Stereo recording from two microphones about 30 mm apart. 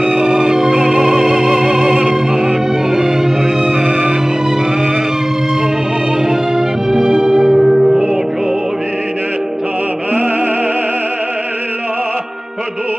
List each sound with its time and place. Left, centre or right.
0.0 s music: right
6.2 s music: centre